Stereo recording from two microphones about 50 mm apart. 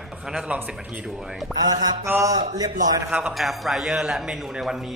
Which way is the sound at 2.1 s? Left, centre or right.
Right.